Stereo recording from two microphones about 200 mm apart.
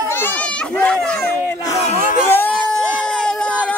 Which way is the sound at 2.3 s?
10° left (ahead or behind).